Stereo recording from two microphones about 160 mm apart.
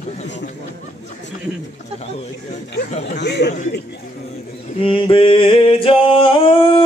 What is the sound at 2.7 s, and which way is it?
Speech, 90° left.